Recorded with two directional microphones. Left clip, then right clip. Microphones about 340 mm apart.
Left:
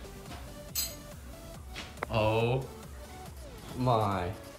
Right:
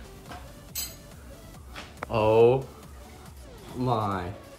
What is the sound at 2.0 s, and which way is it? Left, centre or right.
Speech, centre.